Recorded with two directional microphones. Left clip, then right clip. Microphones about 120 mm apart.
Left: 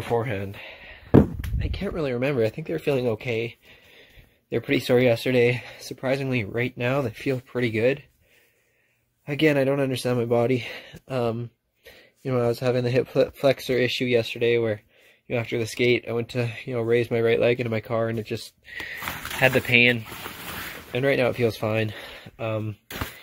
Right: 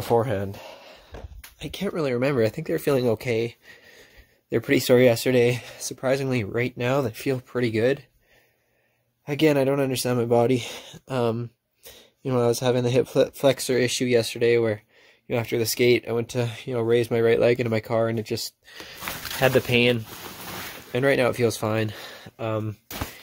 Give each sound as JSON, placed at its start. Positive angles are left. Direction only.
{"t": 0.1, "sound": "a sound", "side_deg": -30}
{"t": 1.6, "sound": "speech", "side_deg": -25}
{"t": 9.2, "sound": "speech", "side_deg": -25}
{"t": 19.4, "sound": "speech", "side_deg": -40}
{"t": 20.9, "sound": "speech", "side_deg": -30}